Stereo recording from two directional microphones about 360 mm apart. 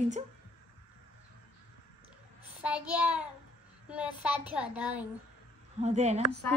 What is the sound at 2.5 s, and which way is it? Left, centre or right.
A child's voice, centre.